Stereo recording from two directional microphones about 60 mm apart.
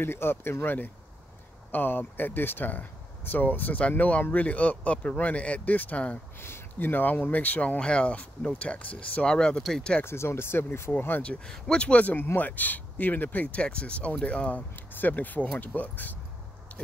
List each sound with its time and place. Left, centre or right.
0.0 s speech: left; by 9.9 s centre
10.0 s speech: left
11.4 s speech: centre; by 16.2 s left